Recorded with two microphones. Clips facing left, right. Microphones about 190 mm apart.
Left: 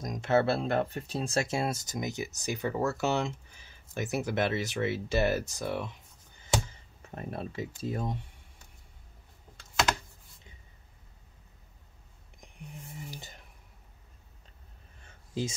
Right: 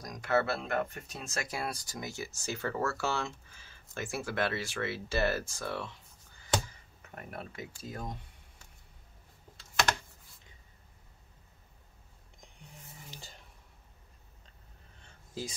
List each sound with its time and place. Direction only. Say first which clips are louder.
0.0 s speech: left 4 dB; 25° left (ahead or behind)
7.0 s speech: left 6 dB; 30° left (ahead or behind)